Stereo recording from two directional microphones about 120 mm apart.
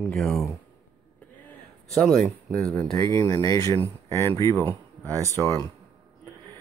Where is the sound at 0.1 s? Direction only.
Centre (ahead or behind).